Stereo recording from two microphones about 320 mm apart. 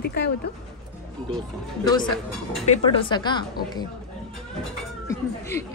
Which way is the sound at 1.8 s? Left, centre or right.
Centre.